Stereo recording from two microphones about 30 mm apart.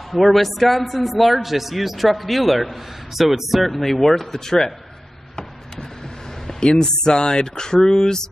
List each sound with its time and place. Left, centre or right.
0.1 s a man's voice: centre
6.6 s speech: left